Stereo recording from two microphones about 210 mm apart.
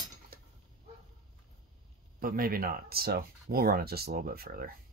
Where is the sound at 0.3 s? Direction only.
45° right (ahead or behind).